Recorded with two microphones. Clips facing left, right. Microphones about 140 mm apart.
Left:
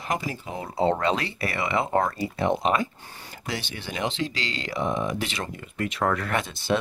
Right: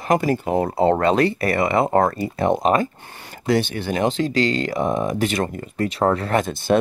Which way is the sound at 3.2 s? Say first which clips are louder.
Right 14 dB; 55° right (ahead or behind).